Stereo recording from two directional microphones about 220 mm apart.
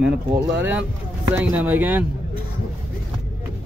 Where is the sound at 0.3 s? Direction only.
10° right (ahead or behind).